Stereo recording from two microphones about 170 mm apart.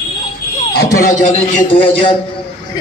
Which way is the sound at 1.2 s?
45° left (ahead or behind).